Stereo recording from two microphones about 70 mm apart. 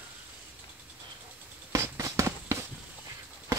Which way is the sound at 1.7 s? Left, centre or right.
Right.